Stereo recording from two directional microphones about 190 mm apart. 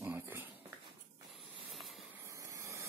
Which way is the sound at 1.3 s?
Centre (ahead or behind).